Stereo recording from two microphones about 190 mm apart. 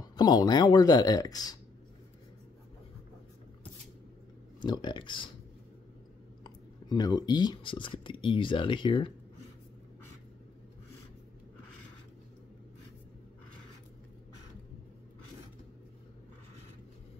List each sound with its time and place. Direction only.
0.0 s speech: 20° left (ahead or behind)
4.6 s speech: 25° left (ahead or behind)
6.4 s speech: 20° left (ahead or behind)